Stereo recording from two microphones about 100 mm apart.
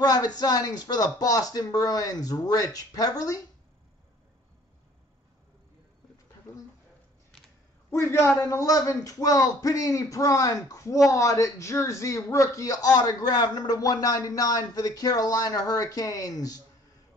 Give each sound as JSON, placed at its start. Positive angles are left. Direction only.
{"t": 0.0, "sound": "a man's voice", "side_deg": 45}
{"t": 7.9, "sound": "a man's voice", "side_deg": 25}